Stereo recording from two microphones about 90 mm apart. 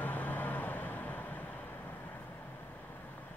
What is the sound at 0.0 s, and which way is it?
Vehicle, 20° left (ahead or behind).